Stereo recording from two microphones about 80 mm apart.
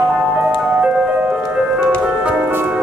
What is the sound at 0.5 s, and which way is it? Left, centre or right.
Music, centre.